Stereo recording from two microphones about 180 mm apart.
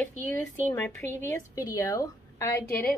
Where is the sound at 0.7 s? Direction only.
10° left (ahead or behind).